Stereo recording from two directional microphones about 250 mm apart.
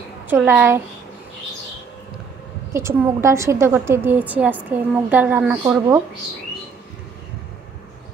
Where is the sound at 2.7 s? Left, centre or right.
Centre.